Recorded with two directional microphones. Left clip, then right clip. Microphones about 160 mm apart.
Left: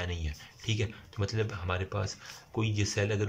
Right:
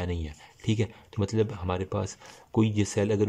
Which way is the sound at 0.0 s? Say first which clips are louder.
Right 3 dB; 30° right (ahead or behind).